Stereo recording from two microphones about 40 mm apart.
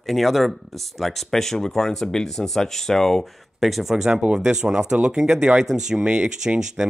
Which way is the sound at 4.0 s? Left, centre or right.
Centre.